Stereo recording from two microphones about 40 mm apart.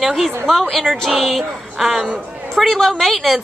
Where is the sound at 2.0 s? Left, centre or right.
Centre.